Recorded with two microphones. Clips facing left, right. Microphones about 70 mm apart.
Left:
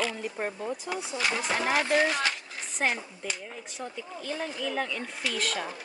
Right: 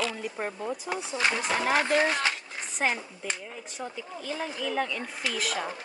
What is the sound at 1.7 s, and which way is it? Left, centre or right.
Speech, right.